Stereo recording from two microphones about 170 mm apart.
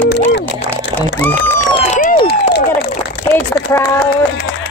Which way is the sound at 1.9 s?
55° left (ahead or behind).